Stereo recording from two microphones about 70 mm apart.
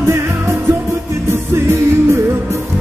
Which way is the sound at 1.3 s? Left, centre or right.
Right.